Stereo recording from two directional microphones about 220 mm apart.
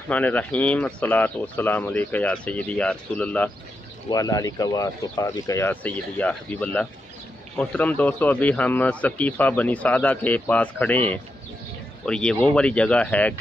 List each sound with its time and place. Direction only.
0.1 s a man's voice: 5° left (ahead or behind)